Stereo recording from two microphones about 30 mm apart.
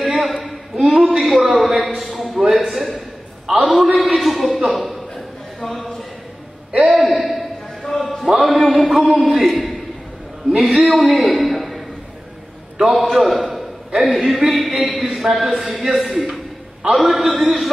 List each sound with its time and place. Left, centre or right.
0.0 s a sound: centre
1.1 s a man's voice: centre
3.4 s a man's voice: centre
3.7 s a man's voice: centre
6.7 s speech: right
7.1 s a sound: centre
9.4 s a man's voice: centre
12.8 s a man's voice: centre